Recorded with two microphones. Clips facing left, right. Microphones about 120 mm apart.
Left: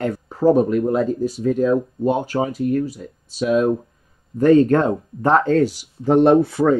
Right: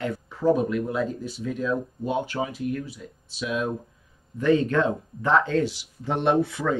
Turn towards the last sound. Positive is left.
turn(degrees=40)  # may be behind; listen again after turning